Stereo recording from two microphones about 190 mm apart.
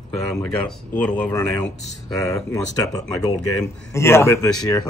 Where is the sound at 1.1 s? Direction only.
10° left (ahead or behind).